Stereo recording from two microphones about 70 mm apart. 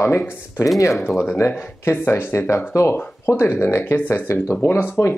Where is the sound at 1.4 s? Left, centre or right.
Left.